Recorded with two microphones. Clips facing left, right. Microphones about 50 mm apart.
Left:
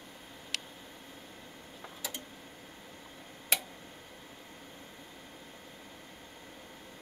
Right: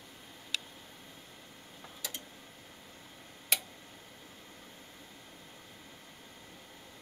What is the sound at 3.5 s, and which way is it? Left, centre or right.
Tick-tock, centre.